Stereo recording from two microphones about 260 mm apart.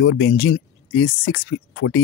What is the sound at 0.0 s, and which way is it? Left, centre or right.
Speech, left.